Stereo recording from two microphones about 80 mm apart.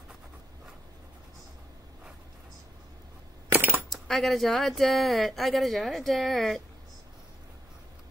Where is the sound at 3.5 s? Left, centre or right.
Right.